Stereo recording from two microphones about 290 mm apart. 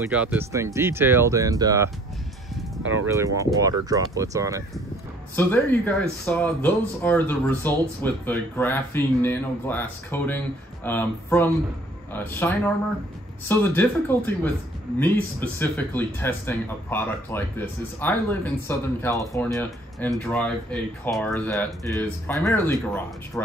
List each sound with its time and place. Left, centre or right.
0.0 s speech: centre
2.8 s speech: right
3.1 s speech: centre
5.3 s a man's voice: centre